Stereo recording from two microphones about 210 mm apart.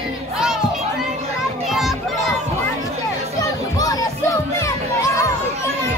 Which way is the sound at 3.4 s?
15° left (ahead or behind).